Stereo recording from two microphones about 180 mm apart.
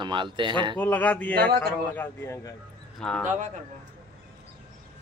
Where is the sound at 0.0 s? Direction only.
25° right (ahead or behind).